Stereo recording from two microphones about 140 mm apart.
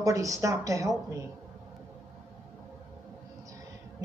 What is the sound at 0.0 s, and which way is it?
Speech, 25° right (ahead or behind).